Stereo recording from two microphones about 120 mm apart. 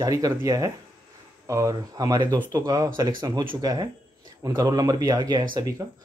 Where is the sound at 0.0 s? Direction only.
30° right (ahead or behind).